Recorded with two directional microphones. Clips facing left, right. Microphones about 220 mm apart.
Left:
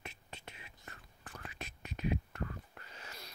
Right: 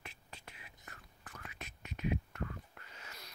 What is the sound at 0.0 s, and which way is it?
Whispering, 25° left (ahead or behind).